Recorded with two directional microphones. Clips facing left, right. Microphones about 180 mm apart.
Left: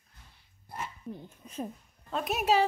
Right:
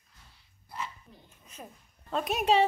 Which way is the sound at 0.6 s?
50° left (ahead or behind).